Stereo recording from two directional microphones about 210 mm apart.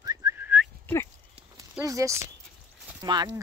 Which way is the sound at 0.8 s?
10° left (ahead or behind).